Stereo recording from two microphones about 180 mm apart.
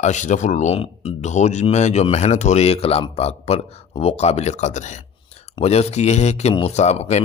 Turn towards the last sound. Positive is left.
turn(degrees=35)  # may be behind; listen again after turning